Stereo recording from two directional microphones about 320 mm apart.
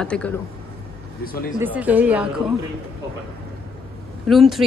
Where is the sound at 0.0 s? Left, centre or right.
Centre.